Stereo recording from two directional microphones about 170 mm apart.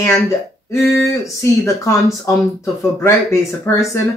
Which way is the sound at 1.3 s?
15° left (ahead or behind).